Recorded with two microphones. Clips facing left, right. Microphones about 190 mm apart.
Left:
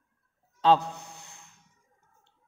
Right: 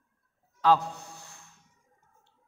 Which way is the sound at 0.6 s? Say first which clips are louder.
Left 1 dB; 25° left (ahead or behind).